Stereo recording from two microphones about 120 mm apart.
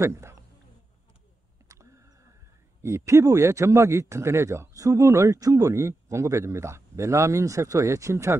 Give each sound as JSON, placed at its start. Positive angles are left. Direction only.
{"t": 0.0, "sound": "speech", "side_deg": -25}
{"t": 1.7, "sound": "vehicle", "side_deg": -25}
{"t": 2.8, "sound": "speech", "side_deg": -25}